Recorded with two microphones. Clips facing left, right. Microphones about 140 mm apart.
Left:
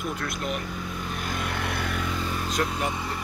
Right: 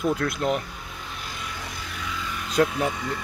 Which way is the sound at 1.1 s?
50° left (ahead or behind).